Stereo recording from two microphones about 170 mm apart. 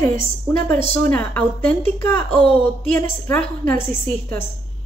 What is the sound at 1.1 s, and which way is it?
A woman's voice, 10° left (ahead or behind).